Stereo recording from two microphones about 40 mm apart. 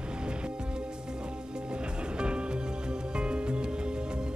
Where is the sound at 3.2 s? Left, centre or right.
Right.